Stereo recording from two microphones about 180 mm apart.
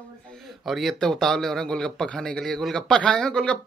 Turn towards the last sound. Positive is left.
turn(degrees=5)  # may be behind; listen again after turning